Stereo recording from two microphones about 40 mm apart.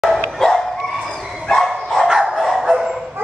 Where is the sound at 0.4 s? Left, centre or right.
Centre.